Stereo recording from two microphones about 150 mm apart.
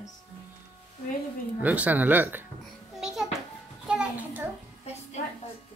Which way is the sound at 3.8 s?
5° right (ahead or behind).